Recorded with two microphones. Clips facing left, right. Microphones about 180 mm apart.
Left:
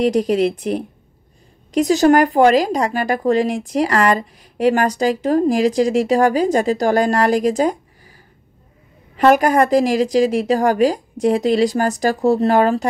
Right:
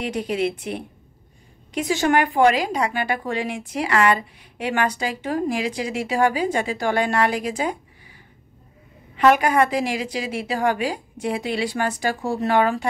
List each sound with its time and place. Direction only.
0.0 s speech: 40° left (ahead or behind)
9.1 s speech: 40° left (ahead or behind)